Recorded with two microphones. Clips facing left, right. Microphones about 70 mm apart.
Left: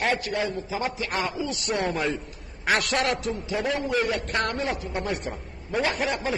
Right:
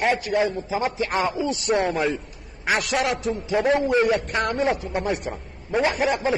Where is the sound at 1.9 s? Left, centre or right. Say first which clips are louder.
Right 3 dB; centre.